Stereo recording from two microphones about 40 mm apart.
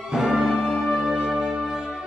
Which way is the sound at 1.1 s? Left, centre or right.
Centre.